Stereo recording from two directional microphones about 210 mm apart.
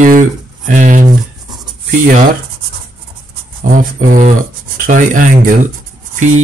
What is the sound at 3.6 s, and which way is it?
Speech, 40° right (ahead or behind).